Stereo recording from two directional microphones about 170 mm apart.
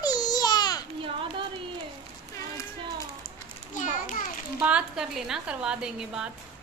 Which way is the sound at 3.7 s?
50° left (ahead or behind).